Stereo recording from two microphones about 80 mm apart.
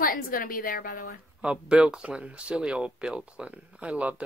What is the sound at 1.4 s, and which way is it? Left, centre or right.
Speech, centre.